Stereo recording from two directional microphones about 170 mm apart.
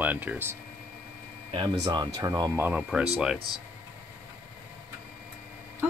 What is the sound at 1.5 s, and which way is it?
Speech, 25° right (ahead or behind).